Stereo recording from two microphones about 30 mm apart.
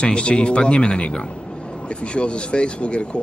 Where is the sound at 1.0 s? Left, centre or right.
Left.